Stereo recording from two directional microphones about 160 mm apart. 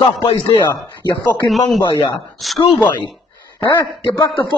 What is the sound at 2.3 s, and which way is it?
Speech, centre (ahead or behind).